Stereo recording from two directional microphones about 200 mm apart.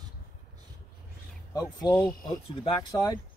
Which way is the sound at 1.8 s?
20° left (ahead or behind).